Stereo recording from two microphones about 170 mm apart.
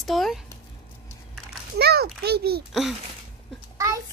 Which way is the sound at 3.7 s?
20° right (ahead or behind).